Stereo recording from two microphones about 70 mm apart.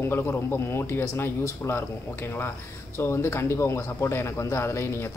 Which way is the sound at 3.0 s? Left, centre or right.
Left.